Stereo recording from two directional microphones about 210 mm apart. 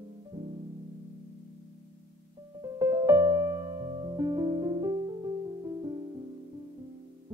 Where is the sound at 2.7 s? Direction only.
15° right (ahead or behind).